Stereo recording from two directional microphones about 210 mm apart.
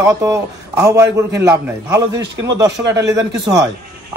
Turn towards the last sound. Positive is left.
turn(degrees=-15)  # may be behind; listen again after turning